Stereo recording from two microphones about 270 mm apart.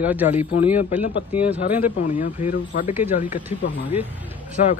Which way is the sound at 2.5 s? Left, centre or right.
Left.